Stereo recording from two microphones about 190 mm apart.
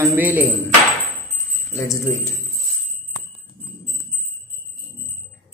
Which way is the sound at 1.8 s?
15° left (ahead or behind).